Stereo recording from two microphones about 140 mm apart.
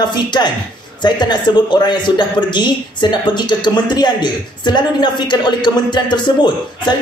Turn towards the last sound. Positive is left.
turn(degrees=30)  # may be behind; listen again after turning